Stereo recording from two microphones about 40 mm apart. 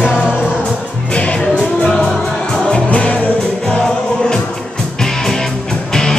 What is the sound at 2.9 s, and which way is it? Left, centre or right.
Music, left.